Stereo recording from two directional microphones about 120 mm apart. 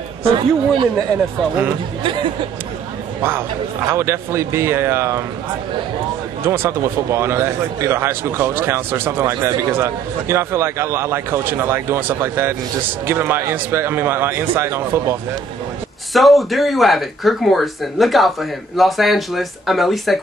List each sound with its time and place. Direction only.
0.2 s speech: 50° right (ahead or behind)
3.2 s a man's voice: 20° right (ahead or behind)
6.4 s a man's voice: 20° right (ahead or behind)
16.1 s speech: centre (ahead or behind)